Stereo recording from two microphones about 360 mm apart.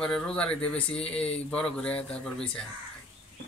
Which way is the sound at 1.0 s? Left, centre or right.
Centre.